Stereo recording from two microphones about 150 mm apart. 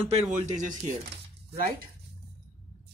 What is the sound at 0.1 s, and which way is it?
Speech, 55° right (ahead or behind).